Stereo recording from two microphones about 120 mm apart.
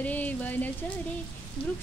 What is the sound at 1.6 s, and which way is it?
Speech, 50° left (ahead or behind).